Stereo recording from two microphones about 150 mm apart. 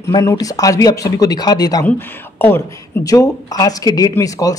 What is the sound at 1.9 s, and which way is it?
Speech, 15° left (ahead or behind).